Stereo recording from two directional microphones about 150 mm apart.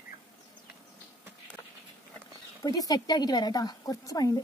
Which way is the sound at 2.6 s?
25° left (ahead or behind).